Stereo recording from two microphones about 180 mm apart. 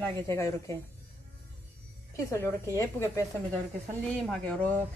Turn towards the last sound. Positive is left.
turn(degrees=5)  # may be behind; listen again after turning